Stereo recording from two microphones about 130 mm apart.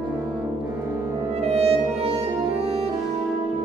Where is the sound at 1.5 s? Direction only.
50° right (ahead or behind).